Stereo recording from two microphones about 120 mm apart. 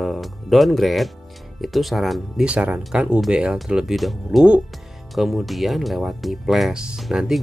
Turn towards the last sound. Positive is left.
turn(degrees=-5)  # may be behind; listen again after turning